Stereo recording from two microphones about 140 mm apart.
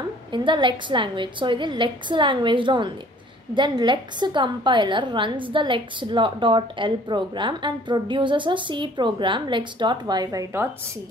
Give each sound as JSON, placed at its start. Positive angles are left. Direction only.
{"t": 0.3, "sound": "a woman's voice", "side_deg": -35}